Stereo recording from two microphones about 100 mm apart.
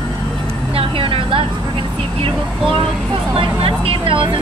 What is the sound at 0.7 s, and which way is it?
Vehicle, 65° right (ahead or behind).